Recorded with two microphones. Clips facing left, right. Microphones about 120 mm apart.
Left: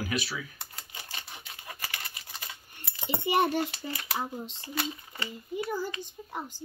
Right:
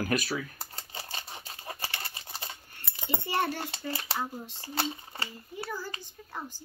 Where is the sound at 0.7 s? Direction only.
30° right (ahead or behind).